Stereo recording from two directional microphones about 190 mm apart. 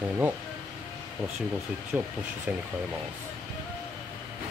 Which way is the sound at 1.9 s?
5° right (ahead or behind).